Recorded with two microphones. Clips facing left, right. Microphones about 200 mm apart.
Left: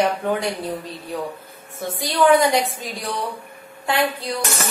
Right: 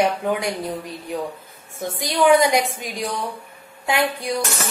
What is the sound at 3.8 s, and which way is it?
Speech, 10° right (ahead or behind).